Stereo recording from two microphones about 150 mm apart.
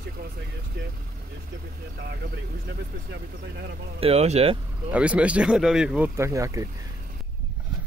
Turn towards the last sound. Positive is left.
turn(degrees=-20)  # may be behind; listen again after turning